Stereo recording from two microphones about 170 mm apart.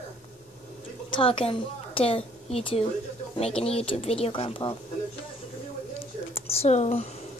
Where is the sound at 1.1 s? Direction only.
30° left (ahead or behind).